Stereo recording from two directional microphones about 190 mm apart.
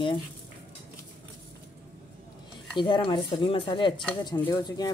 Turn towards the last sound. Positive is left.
turn(degrees=20)  # may be behind; listen again after turning